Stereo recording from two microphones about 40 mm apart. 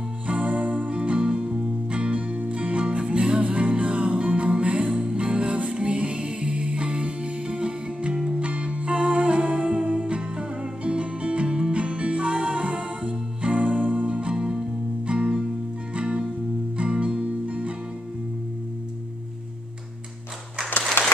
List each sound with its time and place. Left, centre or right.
0.3 s music: right
14.3 s music: centre
21.0 s applause: left